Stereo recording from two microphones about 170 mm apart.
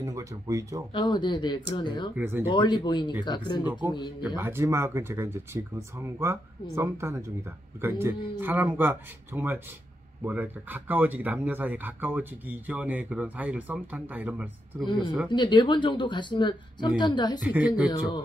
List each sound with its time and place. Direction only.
0.0 s speech: 20° right (ahead or behind)
0.9 s speech: 25° left (ahead or behind)
2.1 s speech: 10° right (ahead or behind)
2.5 s speech: 25° left (ahead or behind)
4.4 s speech: 15° right (ahead or behind)
14.9 s speech: 25° left (ahead or behind)
17.4 s speech: 10° right (ahead or behind)